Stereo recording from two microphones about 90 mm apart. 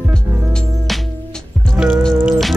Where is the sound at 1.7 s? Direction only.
5° right (ahead or behind).